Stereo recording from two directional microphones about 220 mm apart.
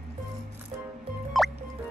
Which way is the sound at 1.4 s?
Centre (ahead or behind).